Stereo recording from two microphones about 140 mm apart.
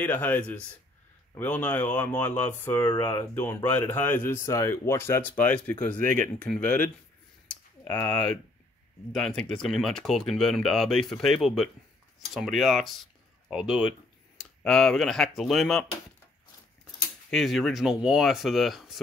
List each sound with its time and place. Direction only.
0.0 s speech: 15° left (ahead or behind)
6.0 s speech: 75° right (ahead or behind)
6.4 s speech: 10° left (ahead or behind)
7.4 s a sound: 10° left (ahead or behind)
9.1 s speech: 5° left (ahead or behind)
17.3 s speech: centre (ahead or behind)